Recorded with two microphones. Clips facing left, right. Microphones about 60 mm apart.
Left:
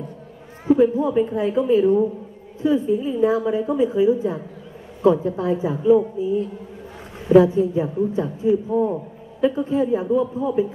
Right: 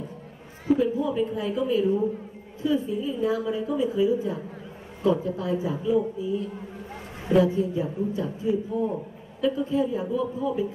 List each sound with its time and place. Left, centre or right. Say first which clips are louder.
0.7 s a woman's voice: left 9 dB; left